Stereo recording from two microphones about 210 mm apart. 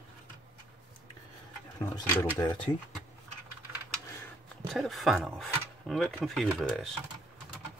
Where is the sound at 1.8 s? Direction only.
15° left (ahead or behind).